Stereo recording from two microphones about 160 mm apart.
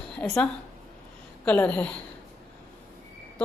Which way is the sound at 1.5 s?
10° left (ahead or behind).